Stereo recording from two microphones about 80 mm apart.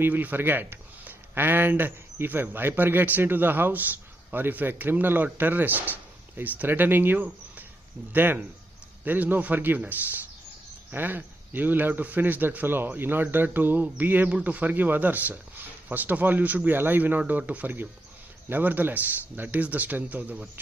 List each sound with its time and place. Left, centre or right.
0.0 s a man's voice: right